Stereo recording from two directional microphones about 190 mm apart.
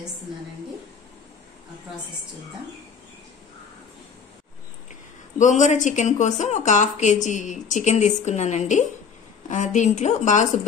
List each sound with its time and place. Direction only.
5.4 s a woman's voice: 40° left (ahead or behind)